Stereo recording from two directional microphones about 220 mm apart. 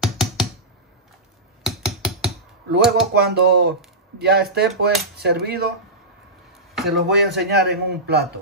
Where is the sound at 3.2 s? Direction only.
50° right (ahead or behind).